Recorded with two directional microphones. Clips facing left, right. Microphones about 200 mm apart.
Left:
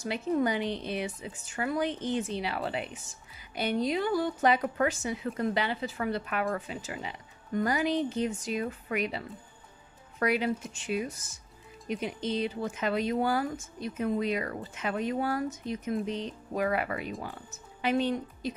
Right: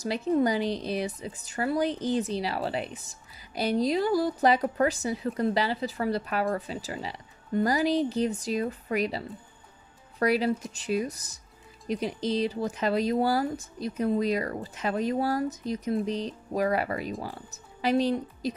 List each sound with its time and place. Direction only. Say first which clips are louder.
0.0 s speech: right 3 dB; 35° right (ahead or behind)